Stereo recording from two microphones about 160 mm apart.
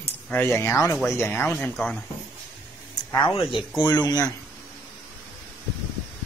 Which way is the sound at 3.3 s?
35° left (ahead or behind).